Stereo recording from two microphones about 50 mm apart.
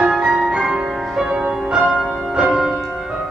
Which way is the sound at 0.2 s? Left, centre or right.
Centre.